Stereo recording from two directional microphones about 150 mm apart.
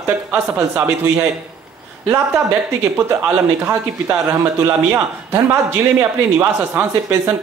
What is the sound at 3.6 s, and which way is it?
Speech, 10° right (ahead or behind).